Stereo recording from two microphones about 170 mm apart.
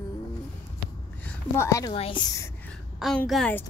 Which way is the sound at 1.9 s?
35° left (ahead or behind).